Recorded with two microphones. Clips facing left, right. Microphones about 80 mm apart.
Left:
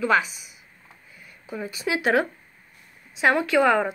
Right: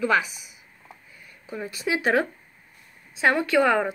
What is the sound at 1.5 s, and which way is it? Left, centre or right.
Speech, centre.